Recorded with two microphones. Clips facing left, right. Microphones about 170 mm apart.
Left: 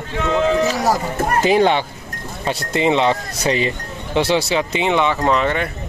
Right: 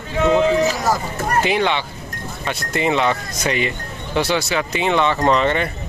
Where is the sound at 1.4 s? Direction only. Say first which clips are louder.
Left 6 dB; 40° left (ahead or behind).